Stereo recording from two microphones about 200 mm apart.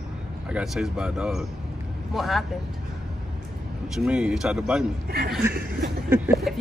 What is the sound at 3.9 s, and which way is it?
Speech, 5° right (ahead or behind).